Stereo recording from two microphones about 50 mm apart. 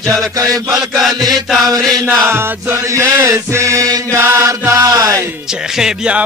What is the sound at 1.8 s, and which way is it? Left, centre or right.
Chant, centre.